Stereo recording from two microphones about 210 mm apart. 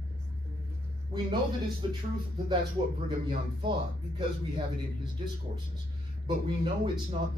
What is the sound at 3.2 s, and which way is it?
A man's voice, 25° right (ahead or behind).